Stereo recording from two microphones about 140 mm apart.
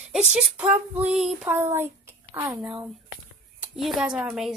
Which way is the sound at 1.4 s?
15° right (ahead or behind).